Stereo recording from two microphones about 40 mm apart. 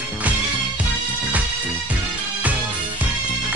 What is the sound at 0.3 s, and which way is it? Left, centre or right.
Music, right.